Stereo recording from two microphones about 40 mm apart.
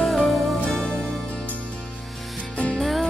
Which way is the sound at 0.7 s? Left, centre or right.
Centre.